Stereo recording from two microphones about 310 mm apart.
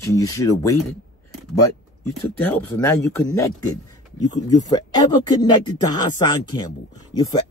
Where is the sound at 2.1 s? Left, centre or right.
Centre.